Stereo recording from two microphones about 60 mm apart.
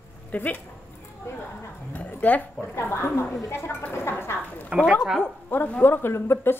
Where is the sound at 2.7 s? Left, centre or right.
Left.